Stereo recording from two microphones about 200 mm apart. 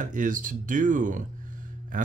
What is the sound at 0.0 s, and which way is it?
Speech, 40° right (ahead or behind).